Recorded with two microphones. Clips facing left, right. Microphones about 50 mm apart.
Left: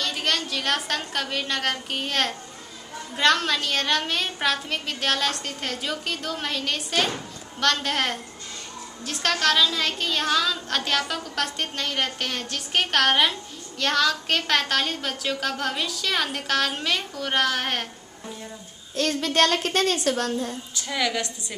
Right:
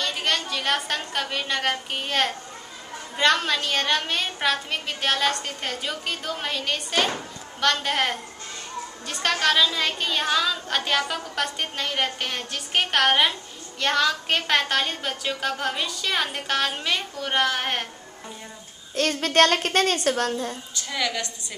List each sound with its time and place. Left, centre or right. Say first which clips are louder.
0.0 s a woman's voice: even; centre
19.1 s speech: right 3 dB; right
20.1 s a woman's voice: right 1 dB; right
20.9 s a woman's voice: left 2 dB; centre